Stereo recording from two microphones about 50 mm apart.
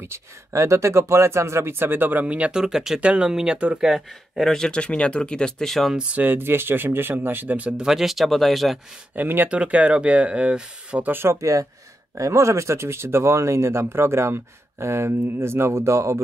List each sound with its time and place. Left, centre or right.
0.0 s speech: right
2.2 s speech: right
2.5 s speech: centre
3.0 s speech: right
3.7 s speech: centre
4.5 s speech: centre
6.1 s speech: right
7.5 s speech: right
7.8 s speech: centre
9.1 s speech: right
9.5 s speech: right
11.1 s speech: right
11.3 s speech: right